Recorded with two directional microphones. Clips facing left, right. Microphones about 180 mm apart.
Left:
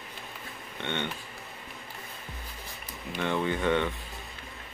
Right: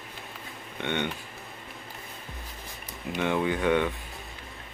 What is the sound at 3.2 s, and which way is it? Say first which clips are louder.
Speech: right 2 dB; 15° right (ahead or behind).